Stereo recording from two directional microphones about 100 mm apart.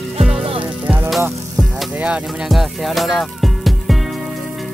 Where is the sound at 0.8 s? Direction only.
20° right (ahead or behind).